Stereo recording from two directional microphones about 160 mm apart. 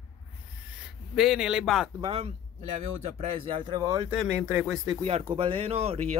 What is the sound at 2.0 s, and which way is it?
Speech, 35° right (ahead or behind).